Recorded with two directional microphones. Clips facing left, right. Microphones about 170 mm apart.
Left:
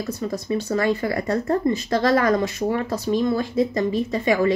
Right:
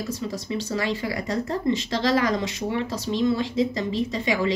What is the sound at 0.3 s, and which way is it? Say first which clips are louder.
Speech: left 4 dB; 55° left (ahead or behind).